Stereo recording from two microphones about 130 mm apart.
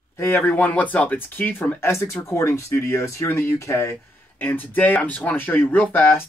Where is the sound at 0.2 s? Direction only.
15° left (ahead or behind).